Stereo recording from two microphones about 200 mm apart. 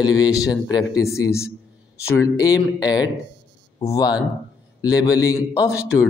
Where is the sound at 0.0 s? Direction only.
20° left (ahead or behind).